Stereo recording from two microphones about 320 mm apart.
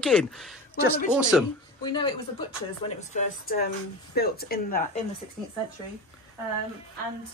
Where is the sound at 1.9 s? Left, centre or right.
Centre.